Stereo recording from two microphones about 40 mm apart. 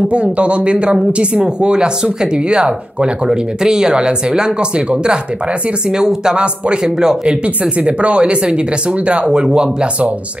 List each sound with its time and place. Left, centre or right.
0.1 s speech: right
7.8 s speech: right